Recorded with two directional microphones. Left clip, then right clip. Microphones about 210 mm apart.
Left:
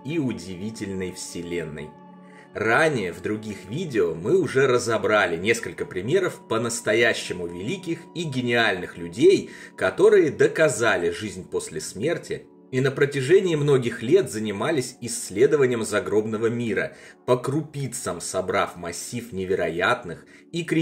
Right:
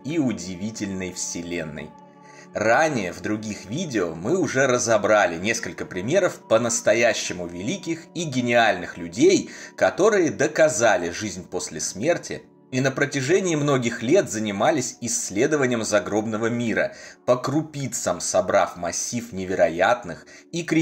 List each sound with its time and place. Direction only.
0.1 s speech: 15° right (ahead or behind)